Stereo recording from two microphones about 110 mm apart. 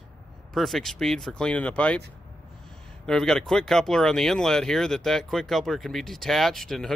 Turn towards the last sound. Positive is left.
turn(degrees=0)  # may be behind; listen again after turning